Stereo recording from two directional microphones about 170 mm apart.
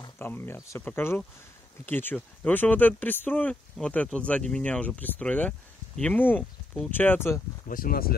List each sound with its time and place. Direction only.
0.2 s speech: 10° left (ahead or behind)
7.6 s speech: 55° left (ahead or behind)